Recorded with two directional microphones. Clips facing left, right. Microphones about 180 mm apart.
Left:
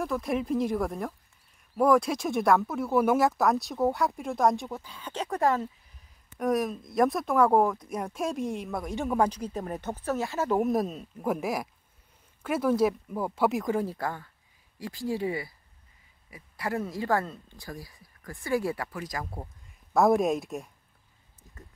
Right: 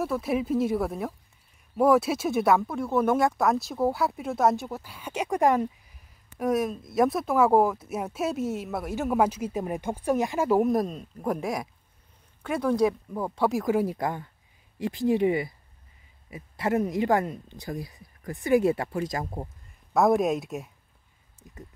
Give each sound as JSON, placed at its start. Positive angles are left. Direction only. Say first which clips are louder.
{"t": 0.0, "sound": "speech", "louder": "right 2 dB", "side_deg": -5}
{"t": 6.3, "sound": "speech", "louder": "right 1 dB", "side_deg": 0}
{"t": 10.6, "sound": "speech", "louder": "right 2 dB", "side_deg": 0}
{"t": 19.9, "sound": "speech", "louder": "right 1 dB", "side_deg": 0}